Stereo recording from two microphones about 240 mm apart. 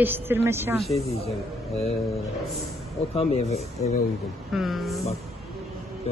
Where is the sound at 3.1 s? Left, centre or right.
Left.